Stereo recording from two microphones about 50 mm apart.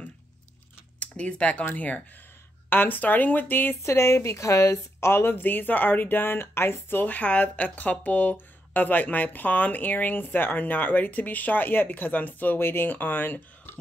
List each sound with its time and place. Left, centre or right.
0.9 s speech: left
3.8 s a woman's voice: left
5.4 s speech: left
7.1 s speech: left
12.5 s speech: left
12.9 s speech: left